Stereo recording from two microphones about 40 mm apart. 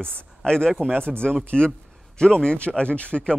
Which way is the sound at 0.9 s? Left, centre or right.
Right.